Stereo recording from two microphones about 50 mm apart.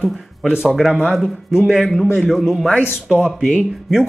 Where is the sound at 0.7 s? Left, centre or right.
Centre.